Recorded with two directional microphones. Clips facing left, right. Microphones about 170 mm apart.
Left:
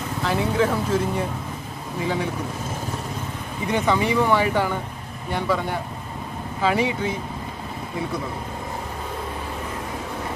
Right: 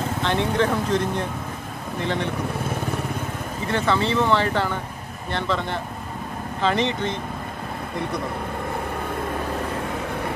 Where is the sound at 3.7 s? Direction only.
15° left (ahead or behind).